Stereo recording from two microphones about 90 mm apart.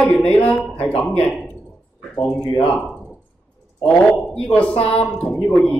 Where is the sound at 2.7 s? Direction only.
10° left (ahead or behind).